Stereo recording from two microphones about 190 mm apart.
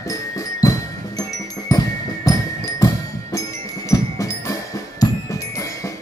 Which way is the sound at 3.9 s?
15° left (ahead or behind).